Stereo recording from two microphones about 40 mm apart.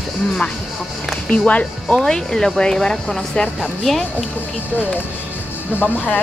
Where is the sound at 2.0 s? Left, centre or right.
Centre.